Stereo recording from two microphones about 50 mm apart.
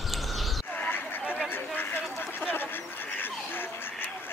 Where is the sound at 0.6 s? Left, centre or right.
Left.